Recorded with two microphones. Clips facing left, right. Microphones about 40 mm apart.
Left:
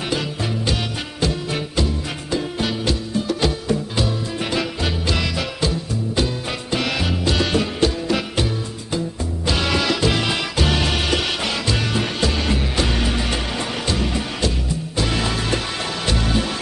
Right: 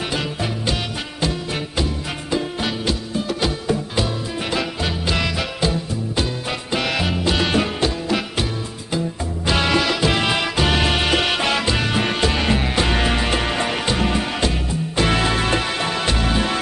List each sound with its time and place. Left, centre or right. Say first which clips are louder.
0.1 s music: even; centre
9.5 s music: right 2 dB; centre; by 15.6 s right
16.1 s music: left 2 dB; right